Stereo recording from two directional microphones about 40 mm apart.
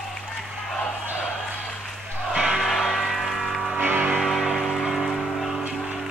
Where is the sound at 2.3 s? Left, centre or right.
Centre.